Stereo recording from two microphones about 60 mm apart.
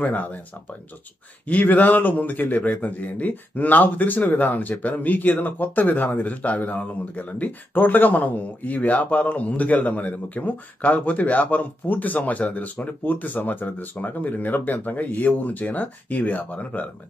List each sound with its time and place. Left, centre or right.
0.0 s a man's voice: left